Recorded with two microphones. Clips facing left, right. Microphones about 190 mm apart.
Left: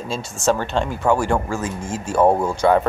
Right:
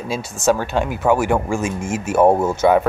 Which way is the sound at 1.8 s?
25° right (ahead or behind).